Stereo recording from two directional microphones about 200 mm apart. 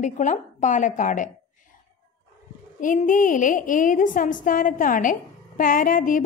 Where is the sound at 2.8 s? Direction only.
40° left (ahead or behind).